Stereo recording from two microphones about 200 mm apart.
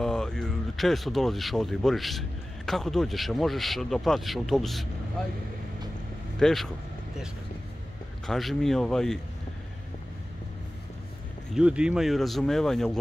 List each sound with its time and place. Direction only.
0.0 s speech: 5° left (ahead or behind)
6.4 s speech: centre (ahead or behind)
8.3 s speech: centre (ahead or behind)
11.5 s speech: 5° right (ahead or behind)